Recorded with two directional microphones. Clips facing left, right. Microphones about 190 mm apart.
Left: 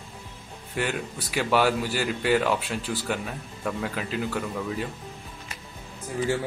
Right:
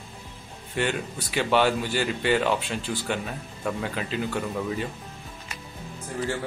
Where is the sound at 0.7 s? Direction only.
5° left (ahead or behind).